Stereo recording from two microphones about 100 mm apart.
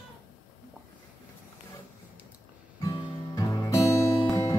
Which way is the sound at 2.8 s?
40° left (ahead or behind).